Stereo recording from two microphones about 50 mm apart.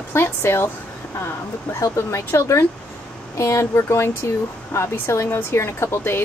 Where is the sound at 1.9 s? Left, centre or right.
Left.